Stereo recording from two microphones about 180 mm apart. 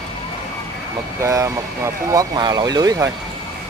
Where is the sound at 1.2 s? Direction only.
15° right (ahead or behind).